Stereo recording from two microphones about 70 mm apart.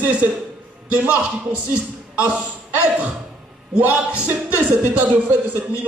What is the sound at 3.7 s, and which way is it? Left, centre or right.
A man's voice, centre.